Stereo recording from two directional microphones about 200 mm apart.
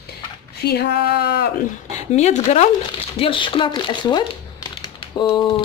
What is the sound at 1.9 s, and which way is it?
Speech, 35° left (ahead or behind).